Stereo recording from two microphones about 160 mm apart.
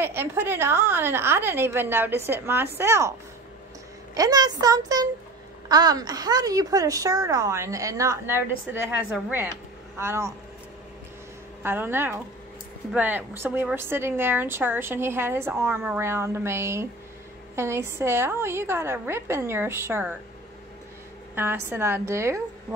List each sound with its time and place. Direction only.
0.0 s a woman's voice: 15° right (ahead or behind)
11.6 s a woman's voice: 15° right (ahead or behind)
21.6 s a woman's voice: 15° right (ahead or behind)